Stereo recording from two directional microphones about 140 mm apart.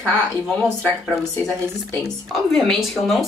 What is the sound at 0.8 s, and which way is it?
Speech, 15° left (ahead or behind).